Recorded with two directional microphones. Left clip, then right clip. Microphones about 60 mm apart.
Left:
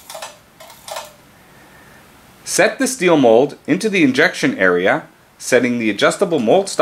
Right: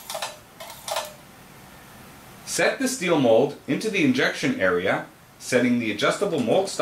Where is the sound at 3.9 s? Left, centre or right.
Left.